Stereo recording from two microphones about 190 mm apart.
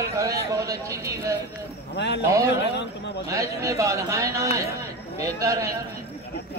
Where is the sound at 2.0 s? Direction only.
65° left (ahead or behind).